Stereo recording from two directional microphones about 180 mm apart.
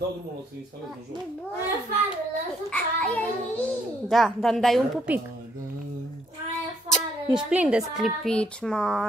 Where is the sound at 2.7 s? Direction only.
10° left (ahead or behind).